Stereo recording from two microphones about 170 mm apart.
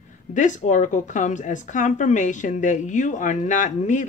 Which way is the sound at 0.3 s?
45° left (ahead or behind).